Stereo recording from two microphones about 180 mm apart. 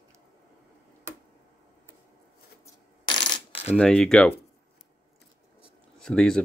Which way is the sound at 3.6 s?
5° left (ahead or behind).